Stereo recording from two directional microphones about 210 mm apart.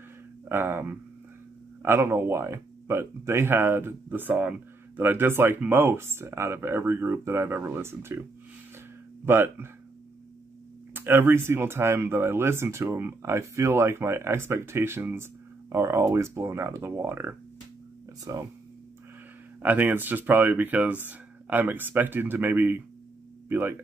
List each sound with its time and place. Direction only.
0.5 s speech: 10° right (ahead or behind)
9.2 s speech: 10° right (ahead or behind)
10.9 s speech: 10° right (ahead or behind)
19.6 s speech: 10° right (ahead or behind)